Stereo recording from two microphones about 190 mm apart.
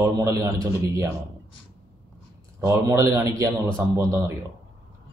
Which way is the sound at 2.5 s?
15° right (ahead or behind).